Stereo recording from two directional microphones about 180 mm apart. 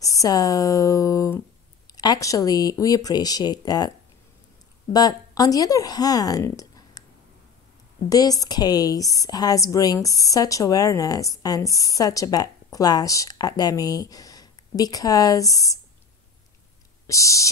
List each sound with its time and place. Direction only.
0.0 s a woman's voice: 20° left (ahead or behind)
4.9 s speech: 20° left (ahead or behind)
8.1 s a woman's voice: 20° left (ahead or behind)
17.0 s speech: 15° left (ahead or behind)